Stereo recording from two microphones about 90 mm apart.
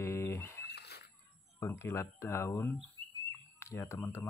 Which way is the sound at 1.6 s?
30° left (ahead or behind).